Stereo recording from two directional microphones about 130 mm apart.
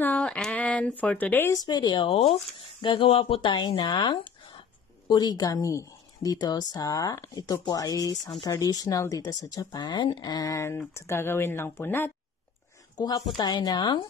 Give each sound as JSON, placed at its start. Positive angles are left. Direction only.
{"t": 0.0, "sound": "speech", "side_deg": 10}
{"t": 1.5, "sound": "a woman's voice", "side_deg": 30}
{"t": 12.9, "sound": "speech", "side_deg": 30}